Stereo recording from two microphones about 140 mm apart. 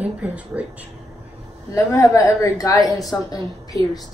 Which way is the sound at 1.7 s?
20° left (ahead or behind).